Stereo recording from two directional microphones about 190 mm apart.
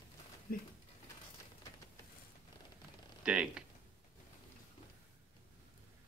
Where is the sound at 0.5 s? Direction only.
50° left (ahead or behind).